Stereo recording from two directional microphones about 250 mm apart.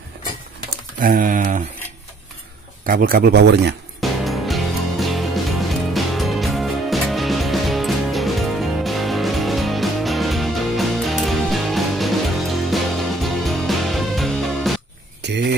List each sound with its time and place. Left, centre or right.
0.9 s speech: right
2.9 s speech: right
4.0 s music: centre
15.2 s a sound: right